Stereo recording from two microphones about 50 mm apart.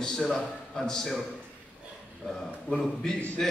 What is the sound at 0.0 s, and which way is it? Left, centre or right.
A man's voice, centre.